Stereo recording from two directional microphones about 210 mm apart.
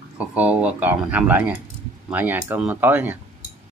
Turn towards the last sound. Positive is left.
turn(degrees=-10)  # may be behind; listen again after turning